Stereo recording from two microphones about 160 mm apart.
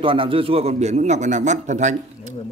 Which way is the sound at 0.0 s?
35° right (ahead or behind).